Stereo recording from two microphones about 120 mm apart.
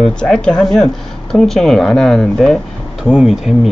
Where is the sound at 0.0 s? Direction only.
5° left (ahead or behind).